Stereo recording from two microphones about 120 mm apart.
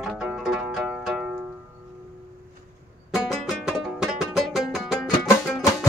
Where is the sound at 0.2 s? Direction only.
5° right (ahead or behind).